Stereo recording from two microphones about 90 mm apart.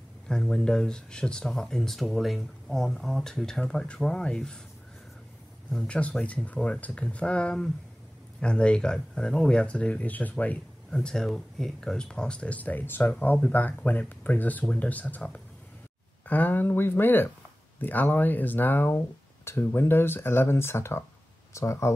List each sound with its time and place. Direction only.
0.3 s speech: 5° left (ahead or behind)
5.7 s speech: 10° left (ahead or behind); by 21.9 s 35° left (ahead or behind)